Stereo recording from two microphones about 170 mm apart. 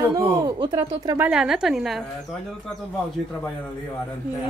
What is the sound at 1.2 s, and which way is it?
A woman's voice, 5° right (ahead or behind).